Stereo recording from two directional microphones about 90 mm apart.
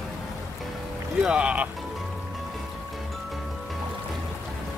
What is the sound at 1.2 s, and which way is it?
Speech, 10° right (ahead or behind).